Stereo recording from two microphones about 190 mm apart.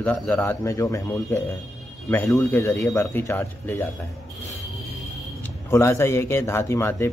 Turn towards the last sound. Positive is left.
turn(degrees=15)  # may be behind; listen again after turning